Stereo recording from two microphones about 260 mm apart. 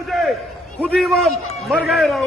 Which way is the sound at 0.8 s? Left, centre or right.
Centre.